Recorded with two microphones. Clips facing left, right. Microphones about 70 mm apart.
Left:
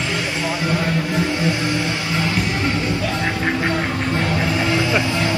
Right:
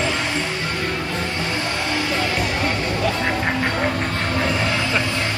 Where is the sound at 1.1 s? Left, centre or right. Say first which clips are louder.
Left 4 dB; centre.